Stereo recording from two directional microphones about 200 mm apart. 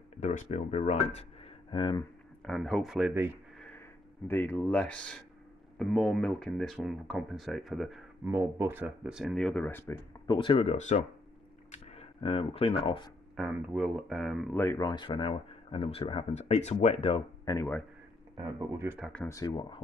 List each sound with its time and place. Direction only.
0.2 s speech: 40° left (ahead or behind)
2.4 s speech: centre (ahead or behind)
4.3 s speech: 10° left (ahead or behind)
8.3 s speech: 10° right (ahead or behind); by 13.1 s 25° left (ahead or behind)
13.4 s speech: 5° right (ahead or behind)
14.5 s speech: 10° left (ahead or behind); by 17.2 s 30° left (ahead or behind)
17.5 s speech: 15° left (ahead or behind)
18.4 s speech: 15° right (ahead or behind)
19.2 s speech: 15° left (ahead or behind)